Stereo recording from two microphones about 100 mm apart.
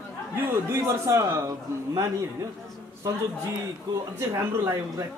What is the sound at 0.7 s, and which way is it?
Speech, 30° right (ahead or behind).